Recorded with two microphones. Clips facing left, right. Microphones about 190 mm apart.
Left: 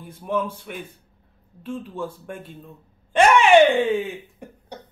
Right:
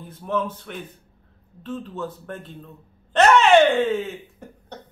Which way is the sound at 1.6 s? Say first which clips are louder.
Even; 10° left (ahead or behind).